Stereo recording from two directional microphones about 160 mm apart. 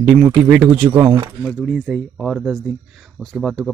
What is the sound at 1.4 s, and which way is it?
Speech, centre (ahead or behind).